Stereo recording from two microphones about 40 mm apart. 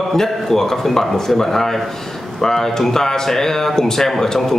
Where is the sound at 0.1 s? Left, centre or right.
Centre.